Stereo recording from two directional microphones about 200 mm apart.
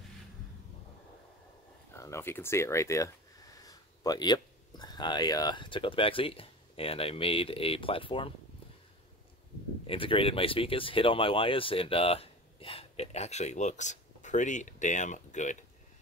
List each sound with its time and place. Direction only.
2.0 s speech: 15° left (ahead or behind)
9.8 s speech: 25° left (ahead or behind)